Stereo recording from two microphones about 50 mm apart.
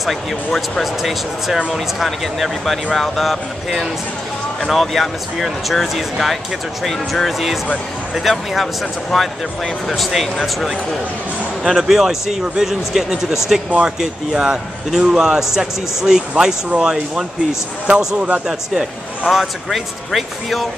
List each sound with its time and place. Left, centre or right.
0.0 s speech: centre
11.6 s speech: centre
13.8 s speech: centre
17.8 s speech: right
19.3 s speech: centre